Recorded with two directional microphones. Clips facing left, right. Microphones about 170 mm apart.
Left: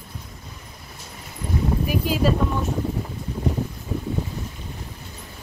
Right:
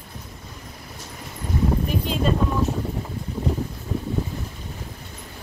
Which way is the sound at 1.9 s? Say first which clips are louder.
Left 2 dB; 5° left (ahead or behind).